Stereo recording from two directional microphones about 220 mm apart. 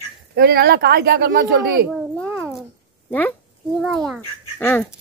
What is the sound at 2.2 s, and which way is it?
Cat, 5° right (ahead or behind).